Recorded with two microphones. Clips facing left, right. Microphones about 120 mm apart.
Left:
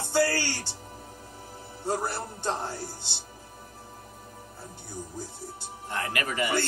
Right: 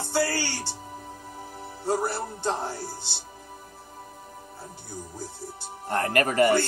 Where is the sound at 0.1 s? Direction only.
15° right (ahead or behind).